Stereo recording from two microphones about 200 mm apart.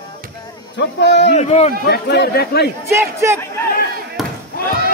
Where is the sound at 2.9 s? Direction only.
15° right (ahead or behind).